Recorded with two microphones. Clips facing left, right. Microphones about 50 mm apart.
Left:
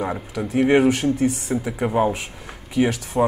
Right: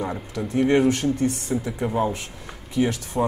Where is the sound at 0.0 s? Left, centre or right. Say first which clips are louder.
Left 2 dB; centre.